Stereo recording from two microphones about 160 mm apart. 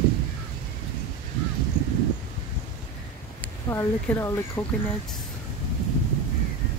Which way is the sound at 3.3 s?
15° left (ahead or behind).